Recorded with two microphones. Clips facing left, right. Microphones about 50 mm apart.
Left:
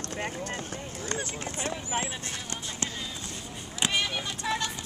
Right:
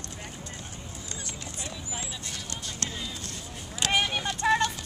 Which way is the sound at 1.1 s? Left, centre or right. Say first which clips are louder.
Left 7 dB; left.